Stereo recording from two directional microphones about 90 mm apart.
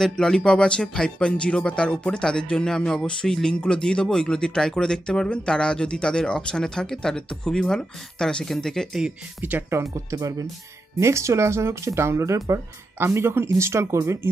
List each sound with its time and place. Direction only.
0.0 s speech: 5° left (ahead or behind)
9.4 s speech: 20° right (ahead or behind)
11.0 s speech: 30° right (ahead or behind)